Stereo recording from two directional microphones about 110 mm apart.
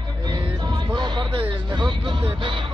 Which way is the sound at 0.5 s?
40° right (ahead or behind).